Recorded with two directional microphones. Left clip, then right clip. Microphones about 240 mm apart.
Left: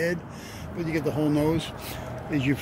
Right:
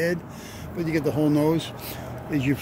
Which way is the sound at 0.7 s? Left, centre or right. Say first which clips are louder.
Right 3 dB; right.